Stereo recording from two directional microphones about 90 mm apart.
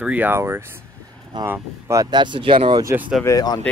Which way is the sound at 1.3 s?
55° right (ahead or behind).